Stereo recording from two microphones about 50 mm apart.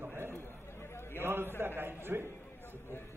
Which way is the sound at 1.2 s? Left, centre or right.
Right.